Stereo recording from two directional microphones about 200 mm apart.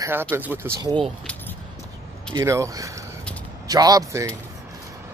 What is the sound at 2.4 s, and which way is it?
Speech, 15° right (ahead or behind).